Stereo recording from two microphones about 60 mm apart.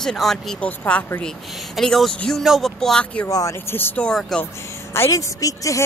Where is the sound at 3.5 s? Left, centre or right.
Left.